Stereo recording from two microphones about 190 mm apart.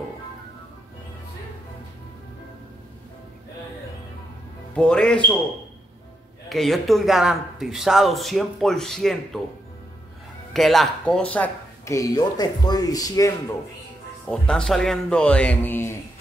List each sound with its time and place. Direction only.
4.7 s a man's voice: 5° left (ahead or behind)
6.5 s a man's voice: centre (ahead or behind)
10.5 s speech: centre (ahead or behind); by 13.3 s 20° left (ahead or behind)
14.2 s a man's voice: 5° left (ahead or behind)